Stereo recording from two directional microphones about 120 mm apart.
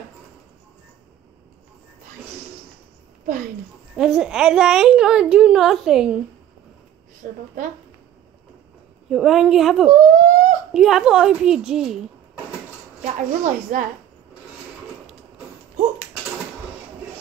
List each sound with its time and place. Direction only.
3.9 s a woman's voice: 5° right (ahead or behind)
9.1 s a woman's voice: 5° right (ahead or behind)
9.8 s a woman's voice: 90° right
10.7 s a woman's voice: 5° right (ahead or behind)
13.0 s a woman's voice: 90° right